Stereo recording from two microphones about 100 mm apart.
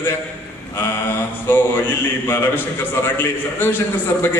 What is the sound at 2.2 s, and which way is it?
A man's voice, 20° left (ahead or behind).